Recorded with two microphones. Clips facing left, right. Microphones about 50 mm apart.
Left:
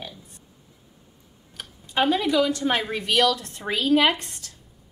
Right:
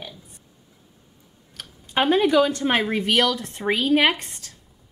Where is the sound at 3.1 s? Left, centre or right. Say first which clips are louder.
Left 4 dB; right.